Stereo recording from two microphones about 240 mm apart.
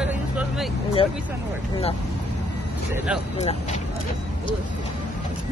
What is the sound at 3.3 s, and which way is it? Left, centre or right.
Speech, left.